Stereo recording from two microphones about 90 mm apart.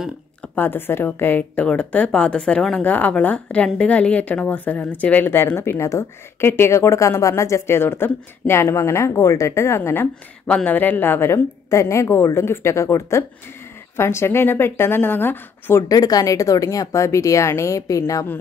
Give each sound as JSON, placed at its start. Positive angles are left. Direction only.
{"t": 0.6, "sound": "a woman's voice", "side_deg": 25}
{"t": 10.4, "sound": "a woman's voice", "side_deg": 15}
{"t": 15.9, "sound": "speech", "side_deg": 45}